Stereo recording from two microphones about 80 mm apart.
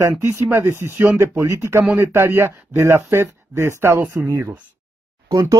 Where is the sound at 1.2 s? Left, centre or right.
Right.